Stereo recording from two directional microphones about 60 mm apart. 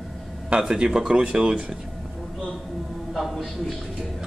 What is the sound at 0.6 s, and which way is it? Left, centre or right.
Speech, centre.